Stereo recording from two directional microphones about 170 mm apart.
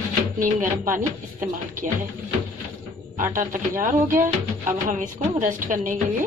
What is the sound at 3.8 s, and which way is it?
A woman's voice, 50° right (ahead or behind).